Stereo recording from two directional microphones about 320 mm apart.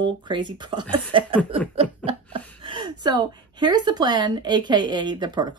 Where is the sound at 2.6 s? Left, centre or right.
Centre.